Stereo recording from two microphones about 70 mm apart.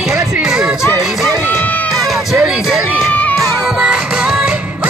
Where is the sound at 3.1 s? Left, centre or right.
Left.